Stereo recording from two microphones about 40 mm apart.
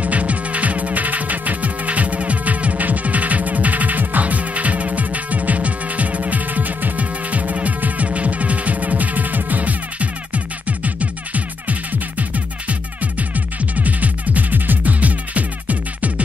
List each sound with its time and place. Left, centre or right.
0.0 s music: right